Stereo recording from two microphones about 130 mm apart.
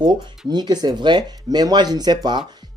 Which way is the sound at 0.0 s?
35° right (ahead or behind).